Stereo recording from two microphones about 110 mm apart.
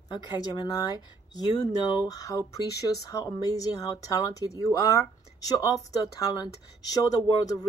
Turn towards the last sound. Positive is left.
turn(degrees=35)  # may be behind; listen again after turning